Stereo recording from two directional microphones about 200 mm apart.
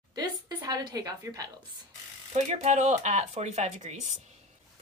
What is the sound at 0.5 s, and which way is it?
A woman's voice, 15° right (ahead or behind).